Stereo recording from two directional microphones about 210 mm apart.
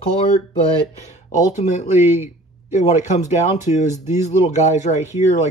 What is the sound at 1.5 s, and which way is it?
Speech, 35° left (ahead or behind).